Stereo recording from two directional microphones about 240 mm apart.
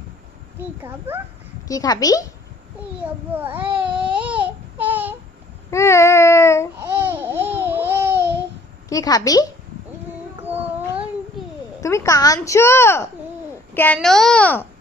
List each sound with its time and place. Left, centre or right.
0.8 s speech: centre
1.7 s speech: centre
3.3 s speech: centre
3.6 s speech: right
4.2 s a sound: centre
5.7 s a sound: centre
6.8 s babbling: centre
8.8 s speech: centre
10.4 s cat: centre
11.8 s a child's voice: centre